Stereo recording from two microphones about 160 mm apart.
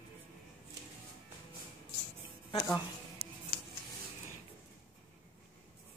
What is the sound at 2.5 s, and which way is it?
Speech, 25° left (ahead or behind).